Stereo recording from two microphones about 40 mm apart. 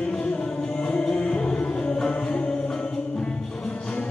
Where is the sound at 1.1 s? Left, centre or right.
Centre.